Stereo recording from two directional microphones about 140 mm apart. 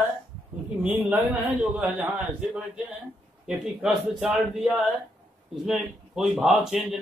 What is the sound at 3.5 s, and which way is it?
A man's voice, 5° right (ahead or behind).